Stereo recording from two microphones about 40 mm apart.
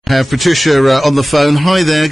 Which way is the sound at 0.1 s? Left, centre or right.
Centre.